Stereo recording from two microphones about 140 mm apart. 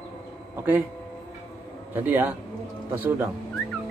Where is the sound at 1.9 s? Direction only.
15° right (ahead or behind).